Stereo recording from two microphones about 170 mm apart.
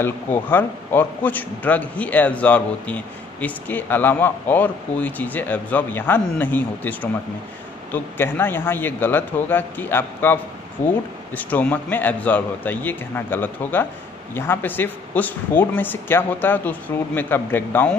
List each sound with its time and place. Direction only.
0.0 s a man's voice: 10° left (ahead or behind)